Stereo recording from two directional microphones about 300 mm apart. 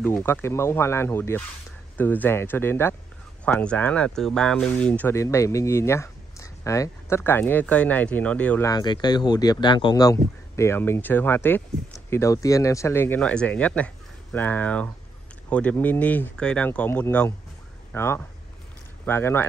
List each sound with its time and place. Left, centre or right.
0.0 s speech: centre